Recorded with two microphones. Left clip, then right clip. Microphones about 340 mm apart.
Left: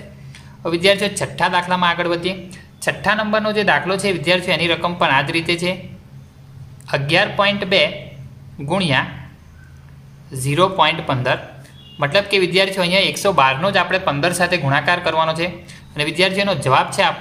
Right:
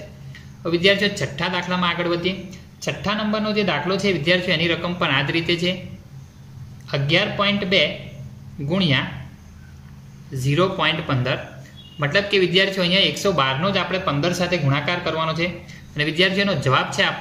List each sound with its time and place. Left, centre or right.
0.7 s a man's voice: centre
6.9 s a man's voice: centre
10.4 s a man's voice: centre